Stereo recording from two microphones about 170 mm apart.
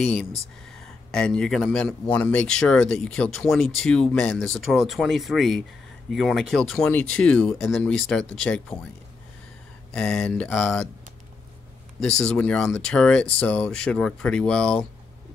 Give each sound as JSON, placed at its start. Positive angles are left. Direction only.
{"t": 0.0, "sound": "a man's voice", "side_deg": 5}
{"t": 9.9, "sound": "a man's voice", "side_deg": 5}
{"t": 12.0, "sound": "a man's voice", "side_deg": 5}